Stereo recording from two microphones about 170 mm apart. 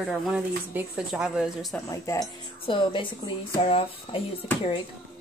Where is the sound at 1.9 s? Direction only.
20° left (ahead or behind).